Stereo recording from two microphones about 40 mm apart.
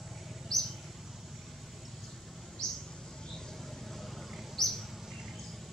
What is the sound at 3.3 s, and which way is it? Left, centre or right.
Bird, centre.